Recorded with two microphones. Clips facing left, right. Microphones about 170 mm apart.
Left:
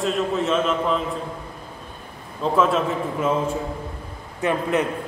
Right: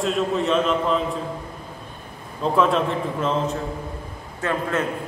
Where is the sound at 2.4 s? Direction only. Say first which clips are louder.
Even; centre (ahead or behind).